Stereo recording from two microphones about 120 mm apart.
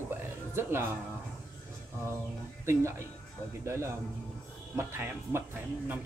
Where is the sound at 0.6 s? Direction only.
20° right (ahead or behind).